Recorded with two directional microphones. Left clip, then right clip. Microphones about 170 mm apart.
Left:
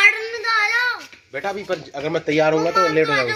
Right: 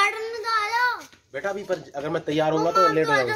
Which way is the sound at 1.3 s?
30° left (ahead or behind).